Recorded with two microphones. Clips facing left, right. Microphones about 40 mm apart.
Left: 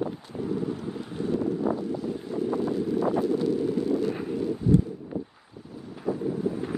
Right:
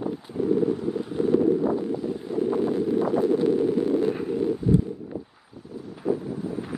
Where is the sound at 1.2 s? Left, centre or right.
Right.